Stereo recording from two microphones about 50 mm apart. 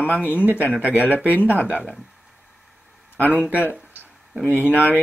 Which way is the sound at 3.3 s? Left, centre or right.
Right.